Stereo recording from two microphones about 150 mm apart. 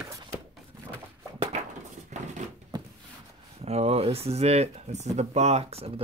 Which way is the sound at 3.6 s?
45° right (ahead or behind).